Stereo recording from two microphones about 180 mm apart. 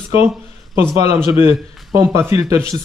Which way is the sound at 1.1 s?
10° right (ahead or behind).